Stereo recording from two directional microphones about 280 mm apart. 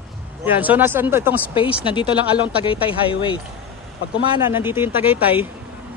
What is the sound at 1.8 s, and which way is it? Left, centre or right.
Speech, centre.